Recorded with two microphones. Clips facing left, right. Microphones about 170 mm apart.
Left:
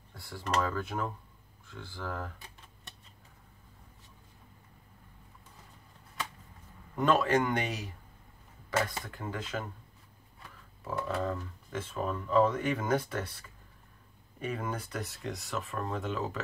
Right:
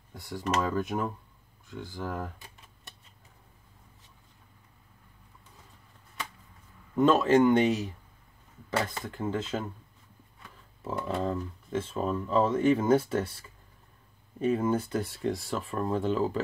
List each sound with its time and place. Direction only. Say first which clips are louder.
0.1 s speech: right 3 dB; 20° right (ahead or behind)
7.0 s speech: right 5 dB; 25° right (ahead or behind)
10.8 s speech: right 2 dB; 25° right (ahead or behind)